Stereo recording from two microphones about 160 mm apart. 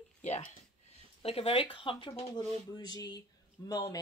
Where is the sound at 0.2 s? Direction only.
40° left (ahead or behind).